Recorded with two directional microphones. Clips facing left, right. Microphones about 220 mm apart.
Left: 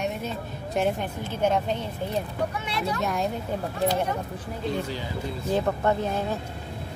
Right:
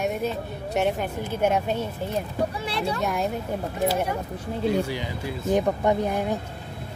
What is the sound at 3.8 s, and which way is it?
Speech, 10° right (ahead or behind).